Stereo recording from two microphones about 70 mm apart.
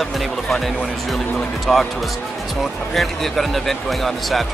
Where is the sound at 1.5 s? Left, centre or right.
Centre.